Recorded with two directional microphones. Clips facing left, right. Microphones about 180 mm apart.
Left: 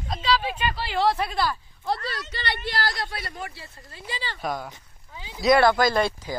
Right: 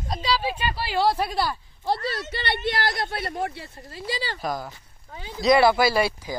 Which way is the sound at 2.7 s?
20° right (ahead or behind).